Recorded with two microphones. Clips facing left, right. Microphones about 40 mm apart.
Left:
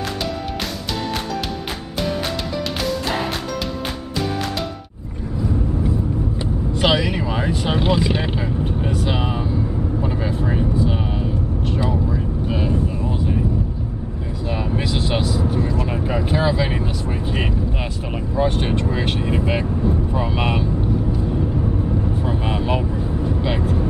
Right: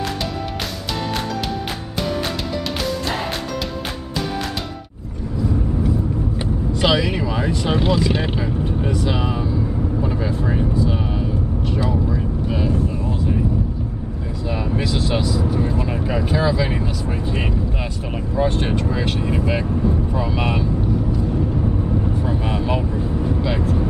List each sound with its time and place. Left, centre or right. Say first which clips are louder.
5.4 s vehicle: right 1 dB; centre
7.0 s a sound: right 1 dB; centre
7.2 s speech: right 1 dB; centre
10.7 s vehicle: even; centre
14.4 s vehicle: right 1 dB; centre
15.9 s a sound: even; centre
16.3 s speech: even; centre
19.7 s speech: right 1 dB; centre
20.1 s speech: even; centre
21.4 s vehicle: even; centre
22.1 s vehicle: even; centre
22.9 s vehicle: right 1 dB; centre
23.4 s speech: even; centre